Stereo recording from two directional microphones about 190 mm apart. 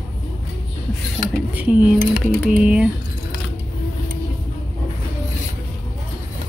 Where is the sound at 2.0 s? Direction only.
55° right (ahead or behind).